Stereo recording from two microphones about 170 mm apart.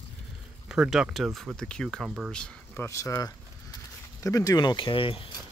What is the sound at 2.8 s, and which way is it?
Speech, 15° left (ahead or behind).